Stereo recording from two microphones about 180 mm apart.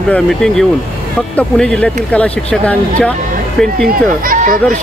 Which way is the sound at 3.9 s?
50° right (ahead or behind).